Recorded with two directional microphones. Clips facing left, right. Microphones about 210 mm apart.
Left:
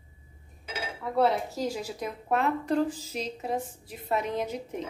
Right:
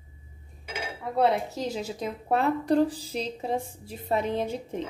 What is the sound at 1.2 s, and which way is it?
A woman's voice, 20° right (ahead or behind).